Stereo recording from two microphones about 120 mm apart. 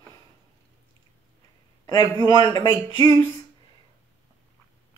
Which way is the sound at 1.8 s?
25° left (ahead or behind).